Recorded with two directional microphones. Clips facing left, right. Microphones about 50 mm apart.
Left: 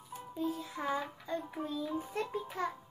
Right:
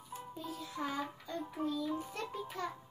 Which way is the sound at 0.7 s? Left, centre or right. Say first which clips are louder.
Left 3 dB; left.